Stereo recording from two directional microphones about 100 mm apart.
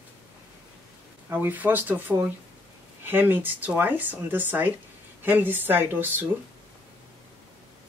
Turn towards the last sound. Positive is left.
turn(degrees=-20)  # may be behind; listen again after turning